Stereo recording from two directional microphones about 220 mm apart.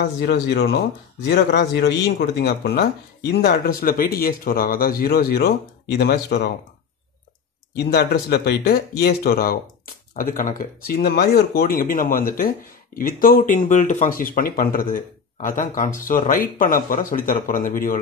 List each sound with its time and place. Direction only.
0.0 s speech: 45° left (ahead or behind)
7.7 s speech: 45° left (ahead or behind)